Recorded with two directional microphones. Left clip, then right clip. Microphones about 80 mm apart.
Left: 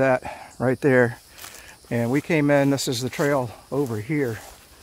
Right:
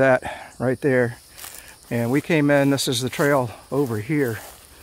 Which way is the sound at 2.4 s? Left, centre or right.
Centre.